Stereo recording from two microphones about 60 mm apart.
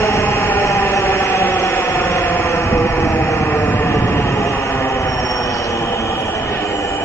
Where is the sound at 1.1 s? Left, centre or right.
Left.